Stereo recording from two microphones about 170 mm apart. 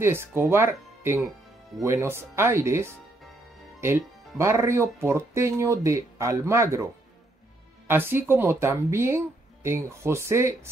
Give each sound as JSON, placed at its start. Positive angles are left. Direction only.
{"t": 0.0, "sound": "speech", "side_deg": -15}
{"t": 7.9, "sound": "speech", "side_deg": -15}